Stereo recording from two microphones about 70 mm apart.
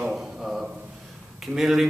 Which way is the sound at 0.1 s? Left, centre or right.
Centre.